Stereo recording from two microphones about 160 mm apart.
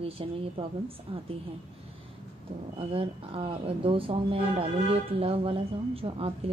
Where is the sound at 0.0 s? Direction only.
35° right (ahead or behind).